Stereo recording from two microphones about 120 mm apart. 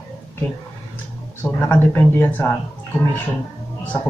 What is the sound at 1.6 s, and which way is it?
Speech, 15° left (ahead or behind).